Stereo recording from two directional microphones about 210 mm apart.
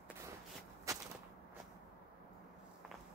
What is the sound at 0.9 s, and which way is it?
Gunshot, 15° right (ahead or behind).